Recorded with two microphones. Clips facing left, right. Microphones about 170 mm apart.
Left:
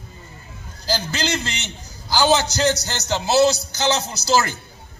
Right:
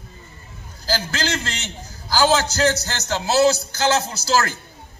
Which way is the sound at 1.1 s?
15° left (ahead or behind).